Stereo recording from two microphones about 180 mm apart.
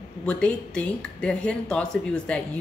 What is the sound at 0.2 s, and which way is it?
Speech, 5° left (ahead or behind).